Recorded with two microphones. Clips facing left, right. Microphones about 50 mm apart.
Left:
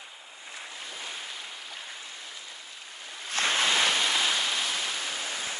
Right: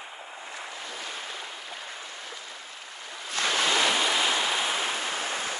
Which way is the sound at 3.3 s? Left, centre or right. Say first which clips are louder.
Even; left.